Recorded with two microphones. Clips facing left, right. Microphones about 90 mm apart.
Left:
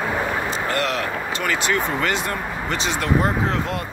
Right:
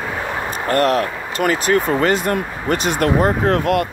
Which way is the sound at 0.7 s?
45° right (ahead or behind).